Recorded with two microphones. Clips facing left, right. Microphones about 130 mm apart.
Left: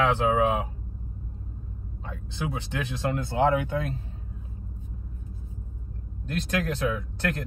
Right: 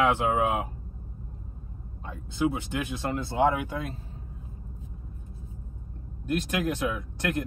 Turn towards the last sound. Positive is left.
turn(degrees=-15)  # may be behind; listen again after turning